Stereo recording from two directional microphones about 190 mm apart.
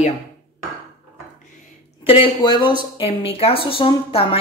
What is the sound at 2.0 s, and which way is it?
A woman's voice, 30° left (ahead or behind).